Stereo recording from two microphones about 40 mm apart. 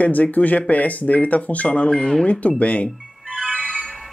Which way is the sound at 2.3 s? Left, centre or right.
Left.